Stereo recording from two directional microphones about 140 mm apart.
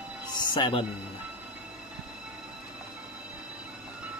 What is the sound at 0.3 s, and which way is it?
Music, 35° left (ahead or behind).